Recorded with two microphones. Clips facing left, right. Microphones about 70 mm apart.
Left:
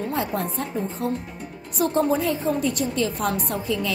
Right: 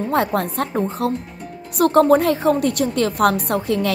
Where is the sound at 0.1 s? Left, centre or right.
Right.